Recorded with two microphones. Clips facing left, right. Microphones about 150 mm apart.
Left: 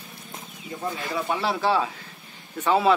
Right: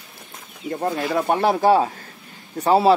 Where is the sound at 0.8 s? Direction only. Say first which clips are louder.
Right 7 dB; 55° right (ahead or behind).